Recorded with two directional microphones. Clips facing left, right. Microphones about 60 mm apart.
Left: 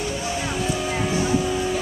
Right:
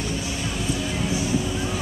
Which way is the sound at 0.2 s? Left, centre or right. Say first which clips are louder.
Left 3 dB; left.